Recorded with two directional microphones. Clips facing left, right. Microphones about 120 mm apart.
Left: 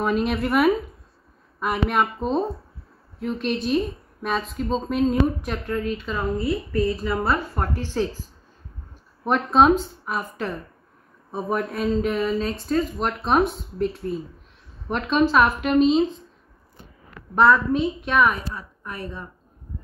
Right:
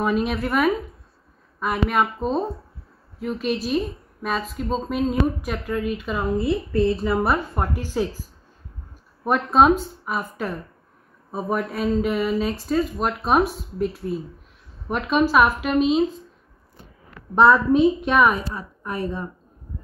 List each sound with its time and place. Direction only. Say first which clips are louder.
0.0 s a woman's voice: even; centre (ahead or behind)
9.2 s a woman's voice: even; 5° right (ahead or behind)
17.4 s a woman's voice: right 3 dB; 20° right (ahead or behind)